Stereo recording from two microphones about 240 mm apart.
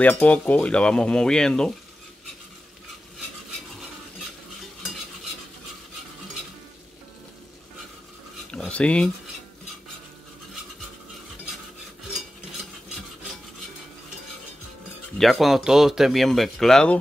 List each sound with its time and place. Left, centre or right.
0.0 s speech: centre
8.5 s a sound: centre
15.1 s speech: centre